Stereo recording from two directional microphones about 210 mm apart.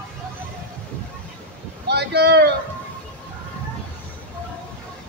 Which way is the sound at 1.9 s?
50° right (ahead or behind).